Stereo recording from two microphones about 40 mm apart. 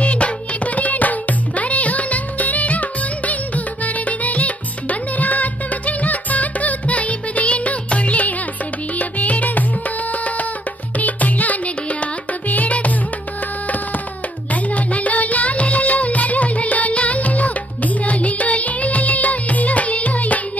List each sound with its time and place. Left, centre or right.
0.0 s music: left
11.0 s music: left
14.5 s music: left